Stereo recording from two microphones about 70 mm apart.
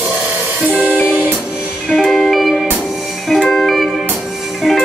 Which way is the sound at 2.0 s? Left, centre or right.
Centre.